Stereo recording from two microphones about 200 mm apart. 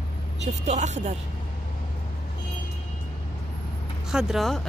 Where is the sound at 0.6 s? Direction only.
35° right (ahead or behind).